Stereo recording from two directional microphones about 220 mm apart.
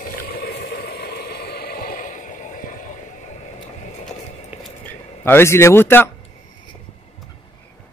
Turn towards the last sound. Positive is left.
turn(degrees=10)  # may be behind; listen again after turning